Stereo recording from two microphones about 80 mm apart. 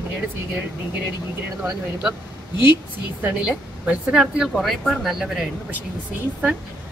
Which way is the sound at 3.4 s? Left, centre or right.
Centre.